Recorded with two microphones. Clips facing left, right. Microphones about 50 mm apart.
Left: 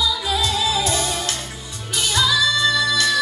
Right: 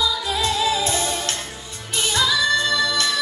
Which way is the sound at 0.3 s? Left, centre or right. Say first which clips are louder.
Even; right.